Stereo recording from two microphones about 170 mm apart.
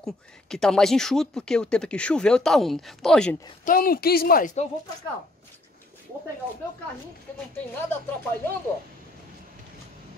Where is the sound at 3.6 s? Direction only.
55° left (ahead or behind).